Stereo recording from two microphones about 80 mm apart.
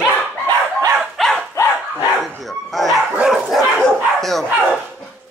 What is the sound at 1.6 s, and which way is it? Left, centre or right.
Dog, left.